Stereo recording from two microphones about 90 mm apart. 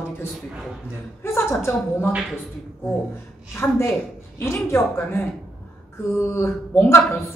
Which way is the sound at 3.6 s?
30° left (ahead or behind).